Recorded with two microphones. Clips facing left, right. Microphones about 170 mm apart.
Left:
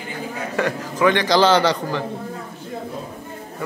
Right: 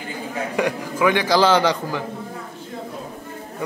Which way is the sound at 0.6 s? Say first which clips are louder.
Left 1 dB; 10° right (ahead or behind).